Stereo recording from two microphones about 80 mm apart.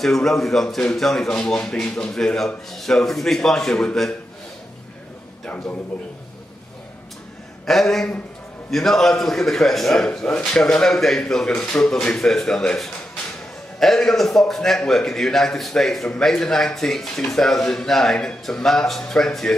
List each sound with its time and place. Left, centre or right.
0.0 s a man's voice: centre
7.6 s a man's voice: centre